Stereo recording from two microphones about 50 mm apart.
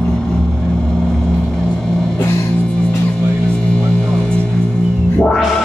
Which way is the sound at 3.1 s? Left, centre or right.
Left.